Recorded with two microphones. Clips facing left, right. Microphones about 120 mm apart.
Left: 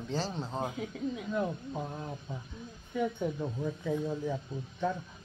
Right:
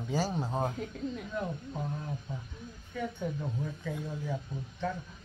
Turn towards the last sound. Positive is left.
turn(degrees=15)  # may be behind; listen again after turning